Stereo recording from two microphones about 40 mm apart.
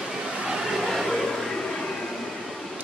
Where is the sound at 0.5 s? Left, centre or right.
Centre.